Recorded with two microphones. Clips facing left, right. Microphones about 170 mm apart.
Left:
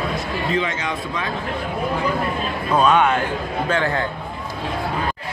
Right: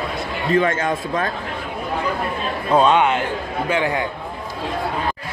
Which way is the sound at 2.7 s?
25° right (ahead or behind).